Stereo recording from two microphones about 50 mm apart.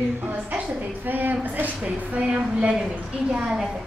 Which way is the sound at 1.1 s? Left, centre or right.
Right.